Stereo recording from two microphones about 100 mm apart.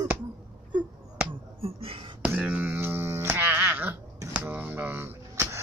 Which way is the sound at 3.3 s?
20° right (ahead or behind).